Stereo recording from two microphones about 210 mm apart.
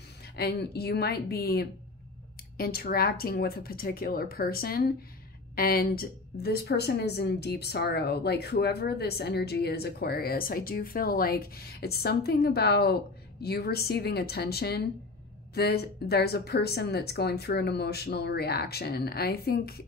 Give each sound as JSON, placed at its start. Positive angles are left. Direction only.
{"t": 0.4, "sound": "speech", "side_deg": 50}